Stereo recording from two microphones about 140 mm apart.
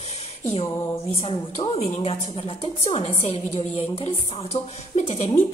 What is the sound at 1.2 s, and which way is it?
A woman's voice, 45° left (ahead or behind).